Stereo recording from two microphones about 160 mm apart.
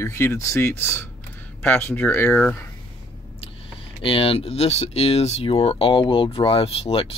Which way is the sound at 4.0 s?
35° left (ahead or behind).